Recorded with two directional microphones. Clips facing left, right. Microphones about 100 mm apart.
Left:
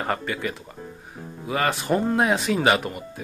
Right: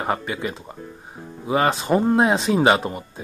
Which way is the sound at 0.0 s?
20° right (ahead or behind).